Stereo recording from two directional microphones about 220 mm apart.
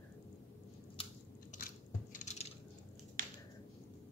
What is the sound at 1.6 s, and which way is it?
Squish, 35° left (ahead or behind).